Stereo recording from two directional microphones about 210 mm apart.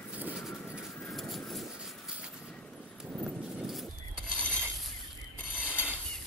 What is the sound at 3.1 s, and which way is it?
Clip-clop, centre (ahead or behind).